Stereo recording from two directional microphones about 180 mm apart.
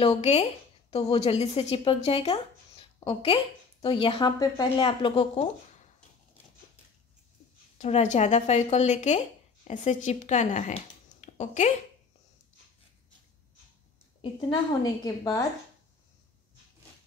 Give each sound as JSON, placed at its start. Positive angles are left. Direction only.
{"t": 0.0, "sound": "a woman's voice", "side_deg": 35}
{"t": 7.8, "sound": "a woman's voice", "side_deg": 40}
{"t": 14.5, "sound": "speech", "side_deg": 20}